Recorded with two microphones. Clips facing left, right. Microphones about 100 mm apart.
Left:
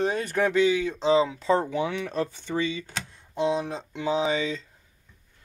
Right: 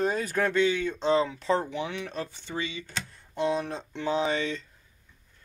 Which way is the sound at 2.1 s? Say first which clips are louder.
Left 6 dB; 45° left (ahead or behind).